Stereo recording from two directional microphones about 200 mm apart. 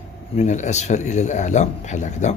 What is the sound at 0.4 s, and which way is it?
A man's voice, 35° left (ahead or behind).